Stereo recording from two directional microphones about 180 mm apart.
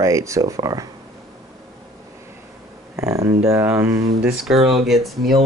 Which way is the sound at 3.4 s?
15° right (ahead or behind).